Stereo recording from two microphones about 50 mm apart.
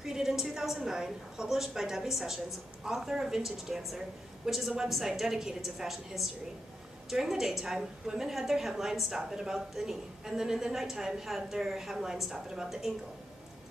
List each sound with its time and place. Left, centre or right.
0.0 s a woman's voice: centre